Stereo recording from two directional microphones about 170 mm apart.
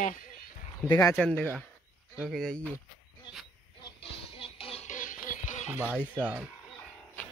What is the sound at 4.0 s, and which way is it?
Music, 30° left (ahead or behind).